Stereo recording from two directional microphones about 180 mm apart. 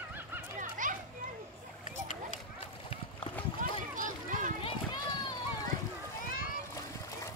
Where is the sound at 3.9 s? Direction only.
45° right (ahead or behind).